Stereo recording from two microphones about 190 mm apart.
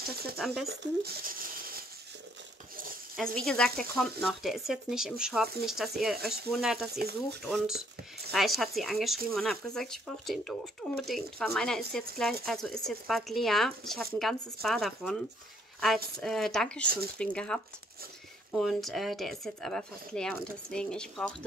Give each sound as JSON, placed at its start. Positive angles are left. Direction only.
{"t": 0.4, "sound": "speech", "side_deg": 0}
{"t": 1.0, "sound": "speech", "side_deg": -50}
{"t": 3.2, "sound": "speech", "side_deg": 5}
{"t": 6.9, "sound": "speech", "side_deg": -55}
{"t": 7.4, "sound": "speech", "side_deg": 0}
{"t": 16.2, "sound": "speech", "side_deg": 0}